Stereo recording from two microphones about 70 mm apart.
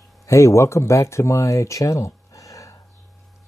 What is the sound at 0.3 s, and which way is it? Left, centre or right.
Speech, left.